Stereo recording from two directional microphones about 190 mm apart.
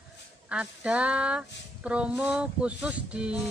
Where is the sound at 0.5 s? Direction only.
5° right (ahead or behind).